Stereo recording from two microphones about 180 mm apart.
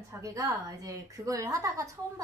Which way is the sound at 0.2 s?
20° right (ahead or behind).